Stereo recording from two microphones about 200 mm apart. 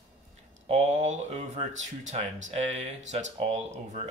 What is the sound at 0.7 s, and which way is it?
Speech, 35° right (ahead or behind).